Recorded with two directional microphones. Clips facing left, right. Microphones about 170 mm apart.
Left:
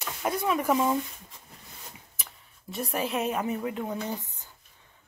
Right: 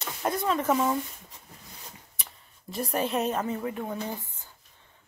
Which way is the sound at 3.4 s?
15° left (ahead or behind).